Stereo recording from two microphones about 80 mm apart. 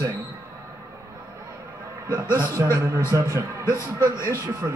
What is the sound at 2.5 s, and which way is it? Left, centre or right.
A man's voice, right.